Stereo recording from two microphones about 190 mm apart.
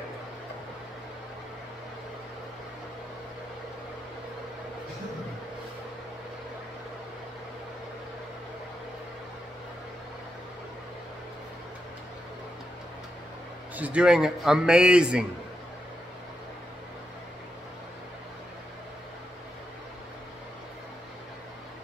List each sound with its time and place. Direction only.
13.7 s a man's voice: 5° right (ahead or behind)